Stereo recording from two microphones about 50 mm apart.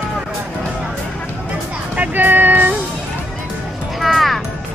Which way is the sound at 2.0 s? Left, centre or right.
Right.